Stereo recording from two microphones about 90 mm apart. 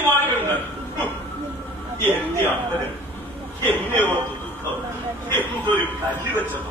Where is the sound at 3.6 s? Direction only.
20° left (ahead or behind).